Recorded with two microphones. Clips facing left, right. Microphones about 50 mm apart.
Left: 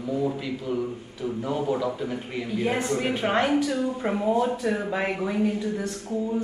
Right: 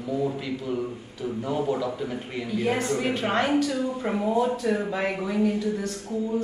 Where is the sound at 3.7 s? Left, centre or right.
Left.